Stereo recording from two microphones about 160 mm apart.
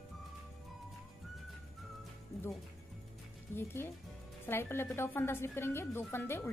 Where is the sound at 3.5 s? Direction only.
15° left (ahead or behind).